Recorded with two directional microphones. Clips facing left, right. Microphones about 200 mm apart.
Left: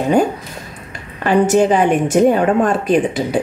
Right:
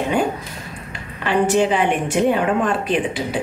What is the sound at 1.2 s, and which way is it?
A woman's voice, 45° left (ahead or behind).